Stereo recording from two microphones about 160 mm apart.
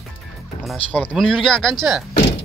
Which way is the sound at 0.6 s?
5° left (ahead or behind).